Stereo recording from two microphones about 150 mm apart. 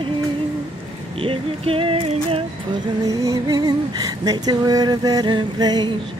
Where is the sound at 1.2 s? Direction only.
35° right (ahead or behind).